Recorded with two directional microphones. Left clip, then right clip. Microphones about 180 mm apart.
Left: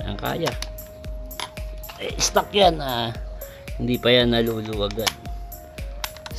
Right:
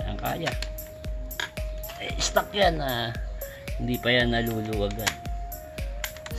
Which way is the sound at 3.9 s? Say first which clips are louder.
Left 5 dB; 40° left (ahead or behind).